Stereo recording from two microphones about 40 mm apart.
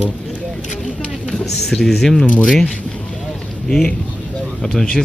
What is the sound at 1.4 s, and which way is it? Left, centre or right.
Speech, centre.